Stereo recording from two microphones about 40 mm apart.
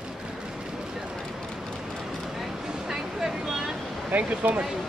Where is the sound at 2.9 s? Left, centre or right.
Centre.